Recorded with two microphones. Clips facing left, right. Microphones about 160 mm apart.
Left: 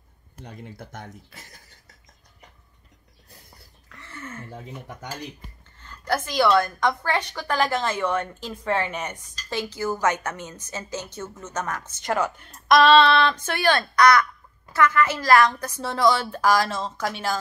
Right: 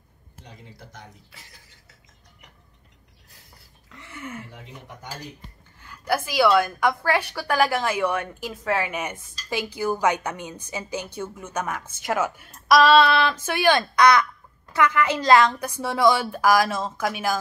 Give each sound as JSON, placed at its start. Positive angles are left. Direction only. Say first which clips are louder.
{"t": 0.4, "sound": "speech", "louder": "left 6 dB", "side_deg": 55}
{"t": 3.9, "sound": "a sound", "louder": "right 2 dB", "side_deg": -15}
{"t": 5.8, "sound": "a woman's voice", "louder": "right 1 dB", "side_deg": -10}